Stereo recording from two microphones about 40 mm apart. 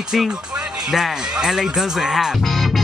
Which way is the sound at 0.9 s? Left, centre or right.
Centre.